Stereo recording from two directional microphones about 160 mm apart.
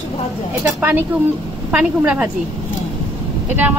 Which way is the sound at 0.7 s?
10° right (ahead or behind).